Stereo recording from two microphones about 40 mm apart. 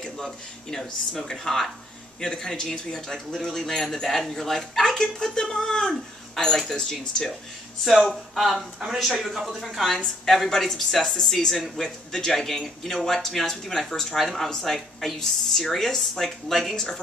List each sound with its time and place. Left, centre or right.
0.0 s speech: centre
3.5 s speech: centre
7.8 s a woman's voice: centre
9.6 s a woman's voice: centre